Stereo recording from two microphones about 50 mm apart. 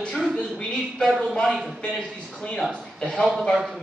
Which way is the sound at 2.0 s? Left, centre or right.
Centre.